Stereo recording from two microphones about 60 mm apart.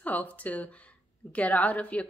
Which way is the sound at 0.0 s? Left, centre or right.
Left.